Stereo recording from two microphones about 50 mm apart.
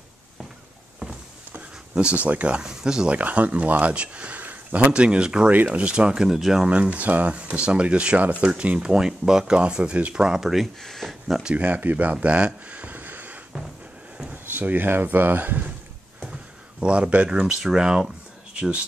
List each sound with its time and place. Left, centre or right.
2.0 s speech: right
3.2 s speech: right
4.9 s speech: centre
5.5 s speech: right
6.2 s speech: centre
6.7 s speech: right
8.9 s speech: centre
10.8 s speech: centre
11.5 s speech: right
11.8 s a sound: right
14.3 s speech: right
16.8 s speech: right
17.3 s speech: centre